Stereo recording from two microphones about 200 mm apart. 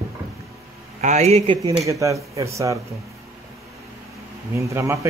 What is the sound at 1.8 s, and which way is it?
Speech, 15° right (ahead or behind).